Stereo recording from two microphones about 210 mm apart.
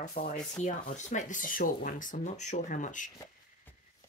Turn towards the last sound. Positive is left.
turn(degrees=35)  # may be behind; listen again after turning